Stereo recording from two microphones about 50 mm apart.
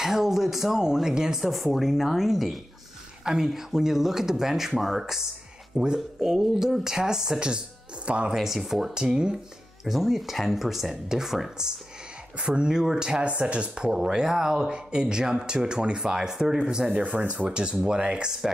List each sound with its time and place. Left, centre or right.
0.0 s speech: centre
1.4 s speech: centre; by 8.4 s right
8.4 s speech: centre
8.9 s speech: centre
12.4 s speech: centre